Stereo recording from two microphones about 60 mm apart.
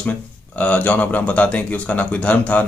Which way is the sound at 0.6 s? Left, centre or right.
Left.